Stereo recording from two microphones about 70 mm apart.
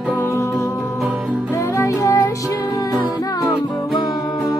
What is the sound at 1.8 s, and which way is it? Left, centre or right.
Music, left.